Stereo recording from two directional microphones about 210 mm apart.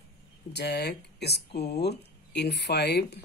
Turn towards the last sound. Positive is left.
turn(degrees=50)  # may be behind; listen again after turning